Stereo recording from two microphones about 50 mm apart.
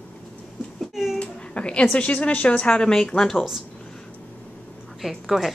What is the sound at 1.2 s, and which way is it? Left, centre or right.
A woman's voice, left.